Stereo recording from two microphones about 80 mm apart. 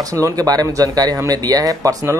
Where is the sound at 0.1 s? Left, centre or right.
Right.